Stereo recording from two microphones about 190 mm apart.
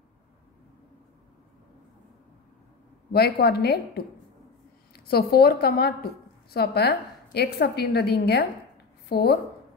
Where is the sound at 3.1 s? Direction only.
55° left (ahead or behind).